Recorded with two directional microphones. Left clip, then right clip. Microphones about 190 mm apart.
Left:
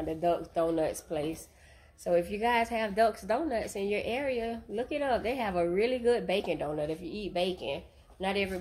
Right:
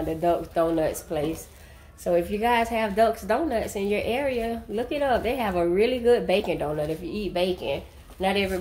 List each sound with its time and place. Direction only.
0.1 s a woman's voice: 25° left (ahead or behind)